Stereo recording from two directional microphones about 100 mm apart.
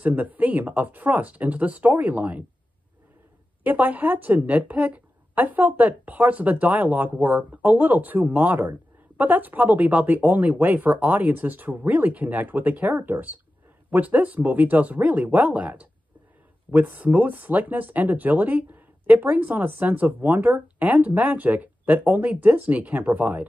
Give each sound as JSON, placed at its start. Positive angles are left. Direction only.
{"t": 0.0, "sound": "a woman's voice", "side_deg": -15}
{"t": 3.6, "sound": "a woman's voice", "side_deg": -15}